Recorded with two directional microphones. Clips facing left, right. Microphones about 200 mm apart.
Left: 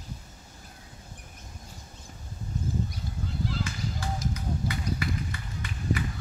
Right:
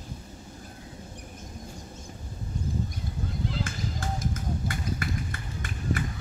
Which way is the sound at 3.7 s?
50° right (ahead or behind).